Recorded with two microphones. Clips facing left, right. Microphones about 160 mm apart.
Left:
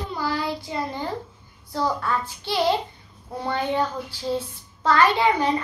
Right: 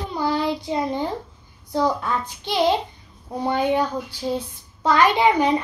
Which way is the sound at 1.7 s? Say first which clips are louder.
Right 3 dB; 20° right (ahead or behind).